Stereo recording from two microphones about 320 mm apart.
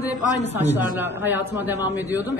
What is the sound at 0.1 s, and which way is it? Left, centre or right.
Speech, centre.